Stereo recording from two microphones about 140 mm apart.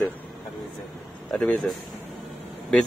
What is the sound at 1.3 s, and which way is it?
Speech, 5° left (ahead or behind).